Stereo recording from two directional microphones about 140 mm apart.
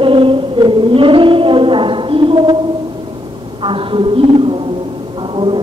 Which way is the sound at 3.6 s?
35° right (ahead or behind).